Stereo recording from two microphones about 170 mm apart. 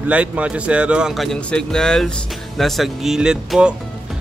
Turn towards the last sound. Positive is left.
turn(degrees=-5)  # may be behind; listen again after turning